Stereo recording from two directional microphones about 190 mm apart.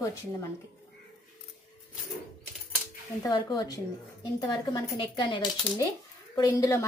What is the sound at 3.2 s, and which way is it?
A woman's voice, 20° left (ahead or behind).